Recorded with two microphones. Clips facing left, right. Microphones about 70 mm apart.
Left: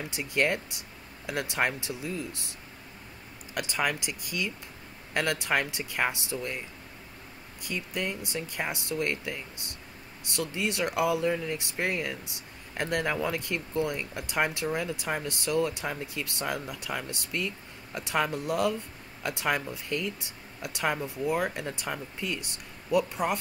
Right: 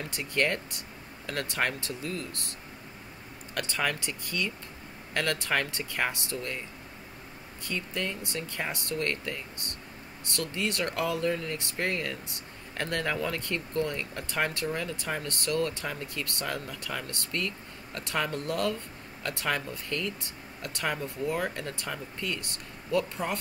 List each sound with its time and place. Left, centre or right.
0.0 s speech: centre
3.5 s speech: centre
7.6 s speech: centre